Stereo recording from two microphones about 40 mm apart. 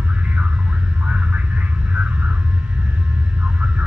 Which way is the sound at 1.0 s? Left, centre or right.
Right.